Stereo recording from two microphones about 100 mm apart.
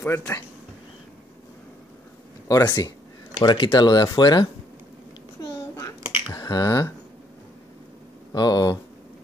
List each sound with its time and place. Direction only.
0.0 s speech: 25° left (ahead or behind)
2.4 s speech: 40° left (ahead or behind)
3.3 s speech: 60° left (ahead or behind)
6.3 s speech: 40° left (ahead or behind)
8.3 s speech: 40° left (ahead or behind)